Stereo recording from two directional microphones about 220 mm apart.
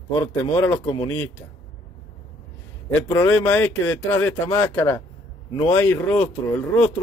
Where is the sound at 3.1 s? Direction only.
10° left (ahead or behind).